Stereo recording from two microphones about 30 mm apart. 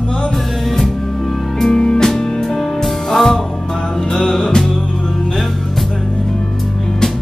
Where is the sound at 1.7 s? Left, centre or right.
Centre.